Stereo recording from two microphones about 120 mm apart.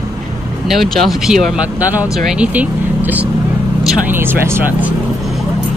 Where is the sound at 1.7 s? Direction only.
15° right (ahead or behind).